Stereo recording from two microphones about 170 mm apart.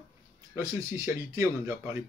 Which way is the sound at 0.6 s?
20° right (ahead or behind).